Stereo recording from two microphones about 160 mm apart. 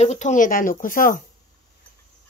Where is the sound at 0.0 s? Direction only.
45° left (ahead or behind).